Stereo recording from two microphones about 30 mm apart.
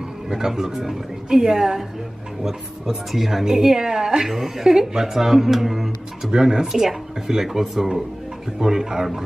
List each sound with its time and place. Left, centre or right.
0.3 s a woman's voice: centre
3.1 s a woman's voice: centre
3.4 s a woman's voice: centre
6.3 s speech: right
6.6 s a woman's voice: centre
8.5 s speech: centre